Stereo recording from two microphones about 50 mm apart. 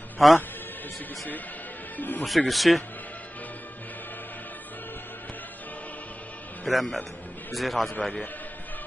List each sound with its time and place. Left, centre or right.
0.2 s speech: centre
2.0 s speech: left
2.2 s speech: centre
6.6 s speech: centre